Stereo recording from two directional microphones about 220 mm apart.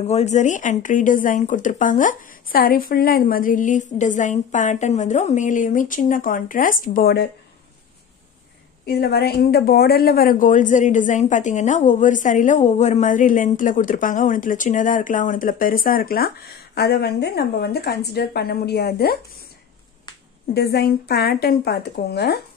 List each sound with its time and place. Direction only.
0.0 s a woman's voice: 30° left (ahead or behind)
8.8 s a woman's voice: 45° left (ahead or behind)
20.5 s a woman's voice: 45° left (ahead or behind)